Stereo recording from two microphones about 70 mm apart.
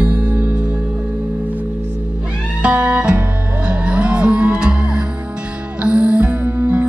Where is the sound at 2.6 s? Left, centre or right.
Right.